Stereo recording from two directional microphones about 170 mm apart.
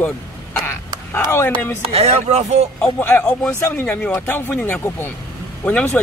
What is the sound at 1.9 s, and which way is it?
Speech, 40° right (ahead or behind).